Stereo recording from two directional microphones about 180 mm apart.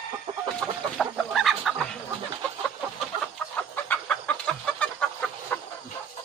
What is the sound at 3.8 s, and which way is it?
Chicken, 10° left (ahead or behind).